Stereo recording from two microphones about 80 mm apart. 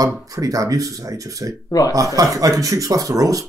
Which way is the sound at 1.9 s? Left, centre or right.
Right.